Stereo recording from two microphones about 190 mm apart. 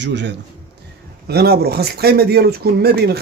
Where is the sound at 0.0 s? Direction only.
65° right (ahead or behind).